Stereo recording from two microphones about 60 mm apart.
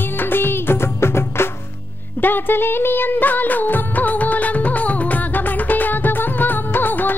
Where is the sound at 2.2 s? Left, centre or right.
Left.